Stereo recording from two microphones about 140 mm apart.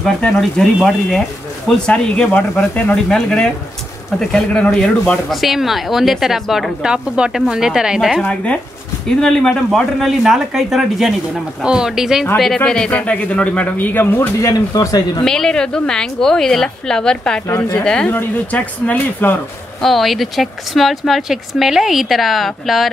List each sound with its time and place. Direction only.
0.0 s a man's voice: 5° left (ahead or behind)
14.4 s speech: 25° left (ahead or behind)
15.2 s a man's voice: 5° left (ahead or behind)
19.8 s speech: centre (ahead or behind)